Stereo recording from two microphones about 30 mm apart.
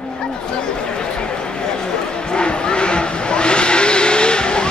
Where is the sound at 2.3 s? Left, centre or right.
Left.